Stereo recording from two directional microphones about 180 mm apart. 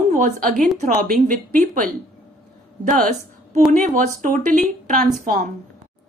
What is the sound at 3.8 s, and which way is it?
A woman's voice, 45° right (ahead or behind).